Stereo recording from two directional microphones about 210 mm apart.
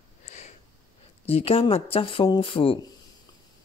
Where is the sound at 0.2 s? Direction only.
35° left (ahead or behind).